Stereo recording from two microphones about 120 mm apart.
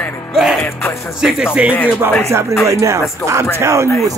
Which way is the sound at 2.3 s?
20° right (ahead or behind).